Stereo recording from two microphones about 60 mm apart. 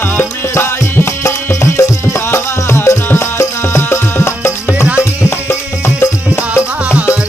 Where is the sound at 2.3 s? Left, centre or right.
Left.